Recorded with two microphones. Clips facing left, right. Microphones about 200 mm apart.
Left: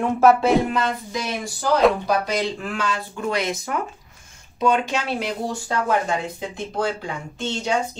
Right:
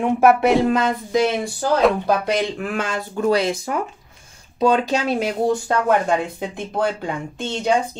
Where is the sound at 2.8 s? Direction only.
45° right (ahead or behind).